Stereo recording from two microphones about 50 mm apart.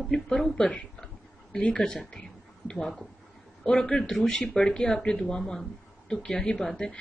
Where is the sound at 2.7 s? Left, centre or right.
Centre.